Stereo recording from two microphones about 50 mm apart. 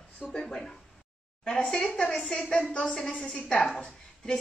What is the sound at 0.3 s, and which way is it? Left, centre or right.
A woman's voice, centre.